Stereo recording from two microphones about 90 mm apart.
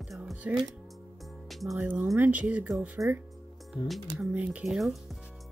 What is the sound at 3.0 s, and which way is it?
Speech, 35° right (ahead or behind).